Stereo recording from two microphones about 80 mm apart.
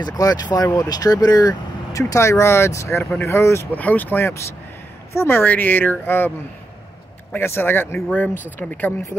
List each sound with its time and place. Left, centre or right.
0.0 s speech: left
3.7 s speech: left
7.3 s speech: left